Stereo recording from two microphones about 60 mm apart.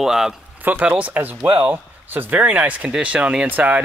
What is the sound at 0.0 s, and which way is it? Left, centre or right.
Speech, centre.